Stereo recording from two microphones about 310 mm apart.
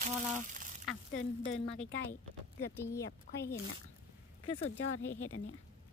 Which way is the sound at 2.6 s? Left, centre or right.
Centre.